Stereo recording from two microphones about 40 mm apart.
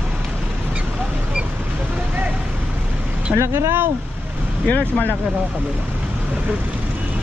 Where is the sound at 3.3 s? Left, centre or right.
Right.